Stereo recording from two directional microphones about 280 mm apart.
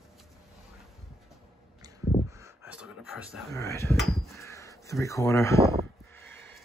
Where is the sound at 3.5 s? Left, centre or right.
Centre.